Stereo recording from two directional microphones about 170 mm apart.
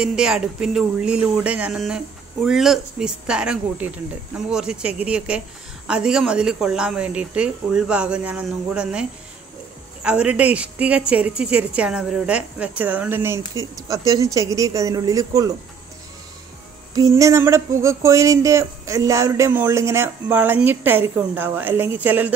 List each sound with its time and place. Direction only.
0.0 s speech: 5° right (ahead or behind)
10.0 s speech: 5° right (ahead or behind)
16.9 s speech: 20° right (ahead or behind)